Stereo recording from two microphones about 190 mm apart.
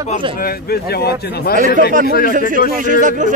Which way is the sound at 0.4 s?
55° left (ahead or behind).